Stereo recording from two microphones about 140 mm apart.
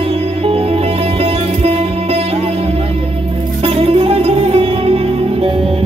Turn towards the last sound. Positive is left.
turn(degrees=-45)  # may be behind; listen again after turning